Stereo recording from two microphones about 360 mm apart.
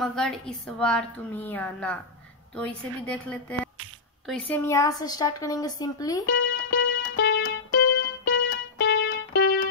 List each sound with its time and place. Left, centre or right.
0.0 s a woman's voice: centre
6.2 s music: left